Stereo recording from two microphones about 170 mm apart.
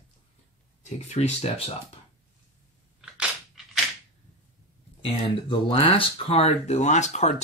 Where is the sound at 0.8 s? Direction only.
40° left (ahead or behind).